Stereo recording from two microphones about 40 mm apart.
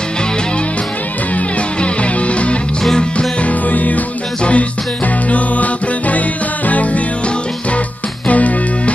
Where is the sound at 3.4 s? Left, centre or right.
Left.